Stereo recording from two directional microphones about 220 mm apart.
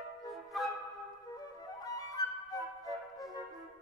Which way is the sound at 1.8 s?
15° left (ahead or behind).